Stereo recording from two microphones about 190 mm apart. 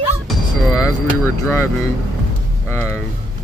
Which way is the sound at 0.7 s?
15° left (ahead or behind).